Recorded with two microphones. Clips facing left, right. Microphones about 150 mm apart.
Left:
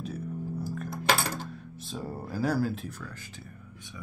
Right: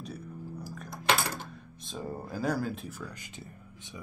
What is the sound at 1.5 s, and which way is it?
Speech, 5° left (ahead or behind).